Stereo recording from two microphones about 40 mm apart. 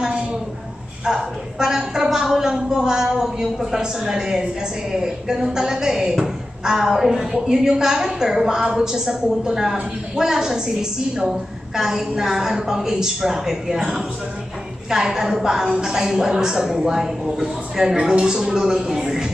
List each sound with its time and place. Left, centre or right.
1.0 s a woman's voice: centre